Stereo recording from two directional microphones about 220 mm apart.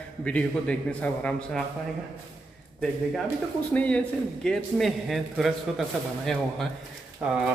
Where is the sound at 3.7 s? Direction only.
5° left (ahead or behind).